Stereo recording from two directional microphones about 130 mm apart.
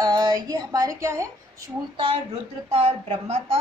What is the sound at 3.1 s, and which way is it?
Speech, 55° right (ahead or behind).